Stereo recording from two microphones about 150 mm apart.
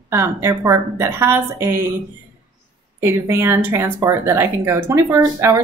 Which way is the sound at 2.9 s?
15° right (ahead or behind).